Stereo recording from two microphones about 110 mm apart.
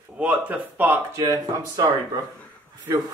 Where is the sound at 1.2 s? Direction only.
35° right (ahead or behind).